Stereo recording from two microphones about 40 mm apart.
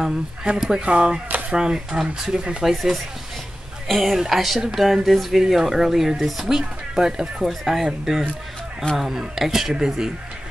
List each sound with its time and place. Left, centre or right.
0.0 s speech: centre
2.6 s speech: centre
5.4 s speech: centre
6.6 s speech: centre